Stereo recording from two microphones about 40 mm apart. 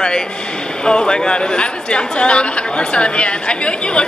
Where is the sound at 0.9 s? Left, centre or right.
Left.